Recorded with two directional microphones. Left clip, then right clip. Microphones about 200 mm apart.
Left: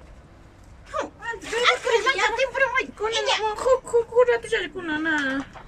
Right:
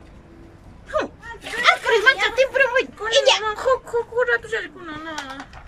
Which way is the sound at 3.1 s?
55° right (ahead or behind).